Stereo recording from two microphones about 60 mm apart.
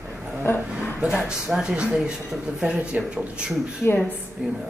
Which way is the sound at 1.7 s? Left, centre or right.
Centre.